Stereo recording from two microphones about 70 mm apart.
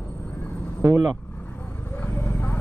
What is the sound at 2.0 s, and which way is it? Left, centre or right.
Clip-clop, left.